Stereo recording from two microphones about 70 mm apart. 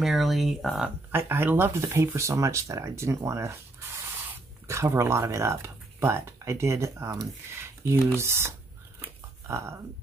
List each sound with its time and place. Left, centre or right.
0.0 s speech: centre
1.1 s speech: right